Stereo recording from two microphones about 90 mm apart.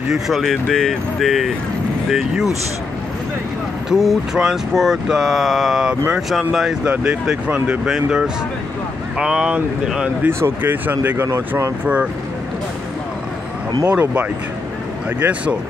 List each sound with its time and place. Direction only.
0.1 s speech: centre (ahead or behind)
3.9 s speech: 5° right (ahead or behind)
10.2 s speech: 20° right (ahead or behind)
13.8 s speech: 15° right (ahead or behind)